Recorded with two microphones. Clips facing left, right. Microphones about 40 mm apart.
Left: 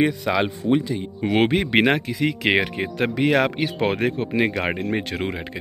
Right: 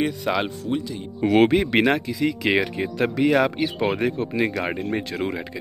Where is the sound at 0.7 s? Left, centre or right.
Left.